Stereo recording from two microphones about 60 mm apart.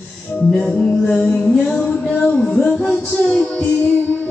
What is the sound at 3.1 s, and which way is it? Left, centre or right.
Music, centre.